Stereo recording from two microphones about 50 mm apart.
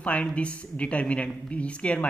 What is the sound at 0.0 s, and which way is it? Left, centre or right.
Speech, left.